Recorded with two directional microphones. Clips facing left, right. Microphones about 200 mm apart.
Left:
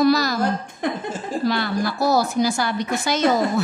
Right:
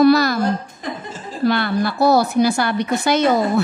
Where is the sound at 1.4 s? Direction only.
60° right (ahead or behind).